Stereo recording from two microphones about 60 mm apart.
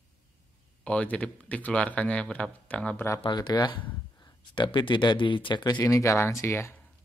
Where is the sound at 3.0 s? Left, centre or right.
Left.